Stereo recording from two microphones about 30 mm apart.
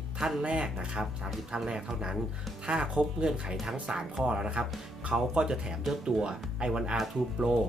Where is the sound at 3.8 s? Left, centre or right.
Right.